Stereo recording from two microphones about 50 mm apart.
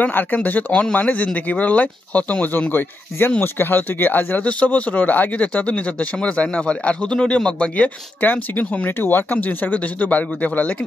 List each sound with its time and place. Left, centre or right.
0.0 s speech: left
3.3 s speech: left
4.5 s speech: left
5.5 s speech: left